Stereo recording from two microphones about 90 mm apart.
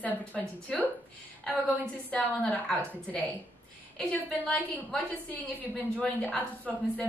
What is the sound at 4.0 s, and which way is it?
A woman's voice, 10° left (ahead or behind).